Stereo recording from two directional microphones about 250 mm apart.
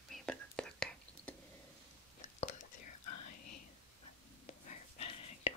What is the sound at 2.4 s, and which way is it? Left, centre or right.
Whispering, left.